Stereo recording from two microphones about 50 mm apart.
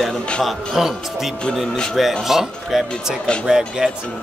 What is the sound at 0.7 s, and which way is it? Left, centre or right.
A man's voice, centre.